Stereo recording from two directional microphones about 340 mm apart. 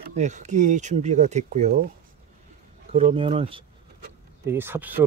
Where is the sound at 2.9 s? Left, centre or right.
Centre.